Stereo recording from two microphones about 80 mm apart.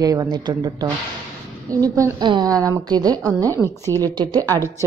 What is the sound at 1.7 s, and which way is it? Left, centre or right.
Speech, right.